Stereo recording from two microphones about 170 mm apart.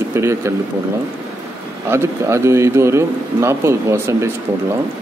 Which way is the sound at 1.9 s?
15° right (ahead or behind).